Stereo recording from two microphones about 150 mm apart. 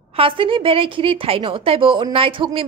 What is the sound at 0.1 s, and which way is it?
A woman's voice, 35° right (ahead or behind).